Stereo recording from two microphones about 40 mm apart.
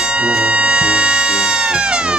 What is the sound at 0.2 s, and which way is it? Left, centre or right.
Music, right.